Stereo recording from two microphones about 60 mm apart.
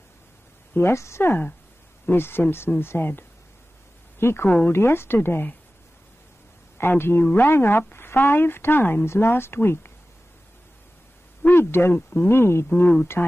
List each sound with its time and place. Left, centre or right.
0.7 s a woman's voice: left
4.5 s speech: left
4.7 s speech: left
6.8 s speech: left
11.5 s a woman's voice: left